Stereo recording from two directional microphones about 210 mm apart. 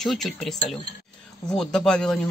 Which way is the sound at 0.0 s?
Centre (ahead or behind).